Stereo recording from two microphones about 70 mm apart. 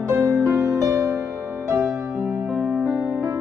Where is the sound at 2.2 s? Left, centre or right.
Centre.